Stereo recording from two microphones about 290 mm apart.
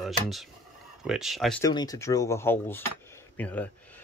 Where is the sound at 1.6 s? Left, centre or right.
Centre.